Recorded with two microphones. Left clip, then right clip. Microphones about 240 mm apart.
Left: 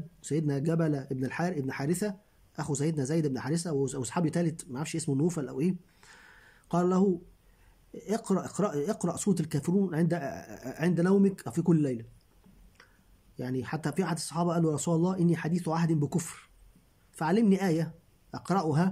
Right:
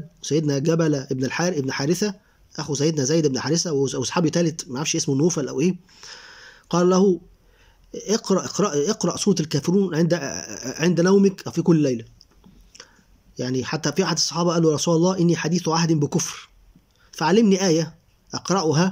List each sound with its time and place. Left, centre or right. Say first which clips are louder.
0.3 s speech: right 10 dB; centre
13.4 s speech: right 9 dB; centre